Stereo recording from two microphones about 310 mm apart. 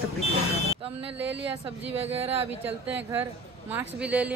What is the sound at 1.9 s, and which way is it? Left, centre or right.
Speech, centre.